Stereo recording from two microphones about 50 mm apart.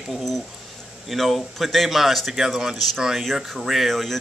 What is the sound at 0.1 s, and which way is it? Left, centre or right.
Speech, centre.